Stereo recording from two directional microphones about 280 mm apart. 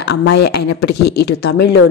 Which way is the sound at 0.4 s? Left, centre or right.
Left.